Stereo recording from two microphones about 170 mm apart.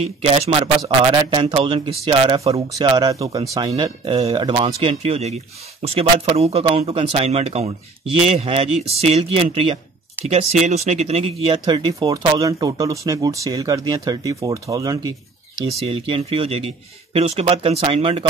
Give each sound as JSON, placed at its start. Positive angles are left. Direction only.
{"t": 0.2, "sound": "speech", "side_deg": -35}
{"t": 16.1, "sound": "speech", "side_deg": -35}